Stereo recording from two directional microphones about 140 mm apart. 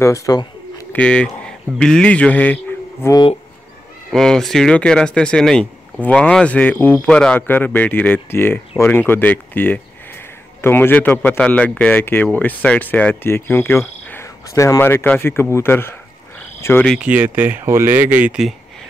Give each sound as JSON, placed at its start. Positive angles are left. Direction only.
{"t": 0.0, "sound": "speech", "side_deg": 20}
{"t": 0.9, "sound": "a man's voice", "side_deg": 10}
{"t": 4.1, "sound": "speech", "side_deg": 5}
{"t": 17.0, "sound": "speech", "side_deg": -10}